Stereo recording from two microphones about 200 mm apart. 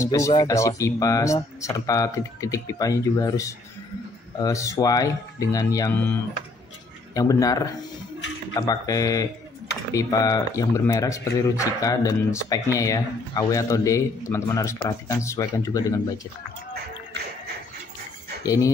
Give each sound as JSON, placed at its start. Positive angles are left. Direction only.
{"t": 0.0, "sound": "a man's voice", "side_deg": 15}
{"t": 7.2, "sound": "a man's voice", "side_deg": 15}
{"t": 18.4, "sound": "speech", "side_deg": 15}